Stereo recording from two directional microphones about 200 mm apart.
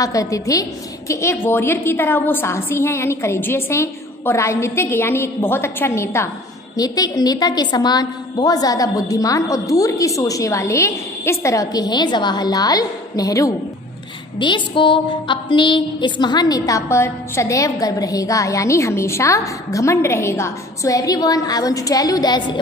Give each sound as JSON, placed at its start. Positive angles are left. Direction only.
{"t": 0.0, "sound": "music", "side_deg": 15}